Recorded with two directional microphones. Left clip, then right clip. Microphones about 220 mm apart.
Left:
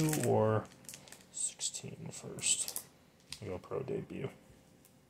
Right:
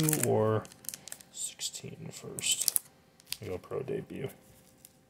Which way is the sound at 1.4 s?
15° right (ahead or behind).